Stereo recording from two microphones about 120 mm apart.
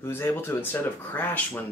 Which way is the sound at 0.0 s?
20° left (ahead or behind).